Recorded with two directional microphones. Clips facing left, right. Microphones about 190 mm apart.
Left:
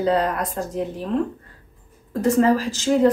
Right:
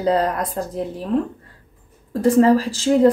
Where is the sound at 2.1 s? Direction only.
35° right (ahead or behind).